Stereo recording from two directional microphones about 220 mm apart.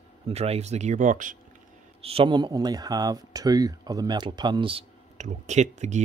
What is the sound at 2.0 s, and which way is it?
Speech, 25° right (ahead or behind).